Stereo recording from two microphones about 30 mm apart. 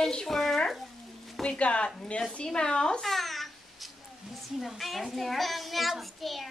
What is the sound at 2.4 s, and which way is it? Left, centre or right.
Speech, left.